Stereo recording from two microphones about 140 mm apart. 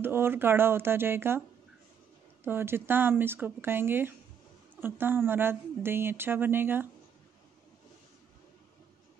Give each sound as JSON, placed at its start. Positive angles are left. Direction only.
{"t": 0.0, "sound": "speech", "side_deg": -15}
{"t": 2.4, "sound": "speech", "side_deg": -15}